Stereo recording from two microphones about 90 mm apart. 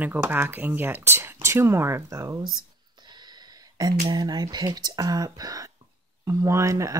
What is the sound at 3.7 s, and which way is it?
Speech, 50° right (ahead or behind).